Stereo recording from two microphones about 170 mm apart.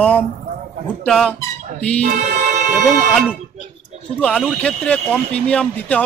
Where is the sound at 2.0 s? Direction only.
45° right (ahead or behind).